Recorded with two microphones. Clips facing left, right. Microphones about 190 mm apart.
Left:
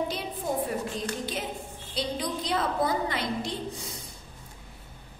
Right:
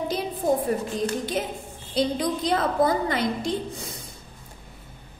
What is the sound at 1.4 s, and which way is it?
A woman's voice, 45° right (ahead or behind).